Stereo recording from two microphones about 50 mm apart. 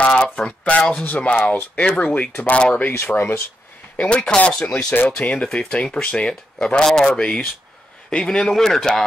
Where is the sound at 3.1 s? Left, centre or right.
Left.